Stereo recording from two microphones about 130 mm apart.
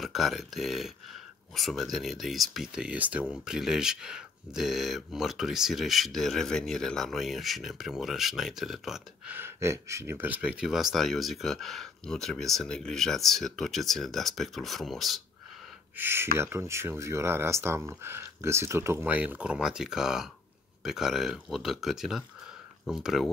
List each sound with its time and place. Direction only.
0.0 s speech: centre (ahead or behind)
16.0 s speech: 20° right (ahead or behind); by 23.3 s 5° right (ahead or behind)